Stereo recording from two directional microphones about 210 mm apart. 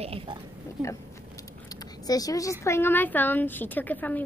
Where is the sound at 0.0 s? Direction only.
30° right (ahead or behind).